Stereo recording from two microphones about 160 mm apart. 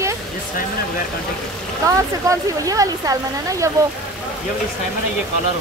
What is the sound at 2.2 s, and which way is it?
Speech, 20° right (ahead or behind).